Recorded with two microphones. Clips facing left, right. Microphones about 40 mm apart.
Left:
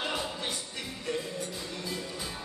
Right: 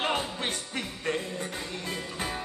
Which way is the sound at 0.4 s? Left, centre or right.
Right.